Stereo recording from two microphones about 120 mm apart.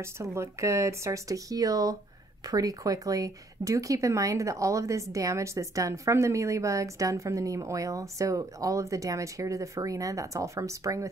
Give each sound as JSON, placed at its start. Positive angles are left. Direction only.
{"t": 0.0, "sound": "speech", "side_deg": -20}